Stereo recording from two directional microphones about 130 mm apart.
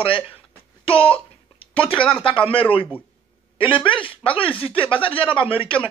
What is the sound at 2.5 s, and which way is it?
Speech, 45° left (ahead or behind).